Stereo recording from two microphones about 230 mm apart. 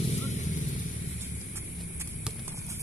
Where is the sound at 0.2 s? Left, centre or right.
Left.